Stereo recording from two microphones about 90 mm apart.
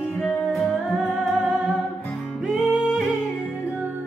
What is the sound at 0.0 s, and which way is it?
Music, 15° left (ahead or behind).